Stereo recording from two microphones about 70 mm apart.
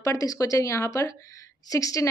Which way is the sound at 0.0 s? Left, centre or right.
Left.